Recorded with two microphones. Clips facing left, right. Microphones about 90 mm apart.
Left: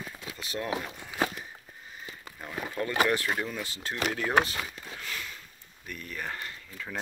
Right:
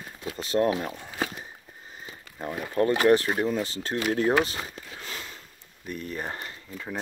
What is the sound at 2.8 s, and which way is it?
Speech, 45° right (ahead or behind).